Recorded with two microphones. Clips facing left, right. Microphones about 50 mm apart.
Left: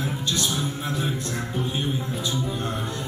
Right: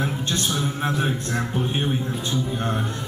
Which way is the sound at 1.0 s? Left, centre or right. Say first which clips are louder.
Right 3 dB; right.